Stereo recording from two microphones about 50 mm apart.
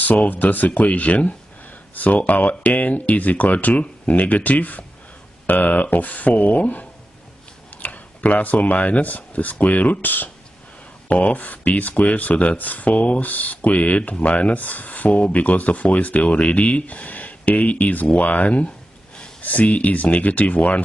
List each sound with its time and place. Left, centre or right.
0.0 s speech: left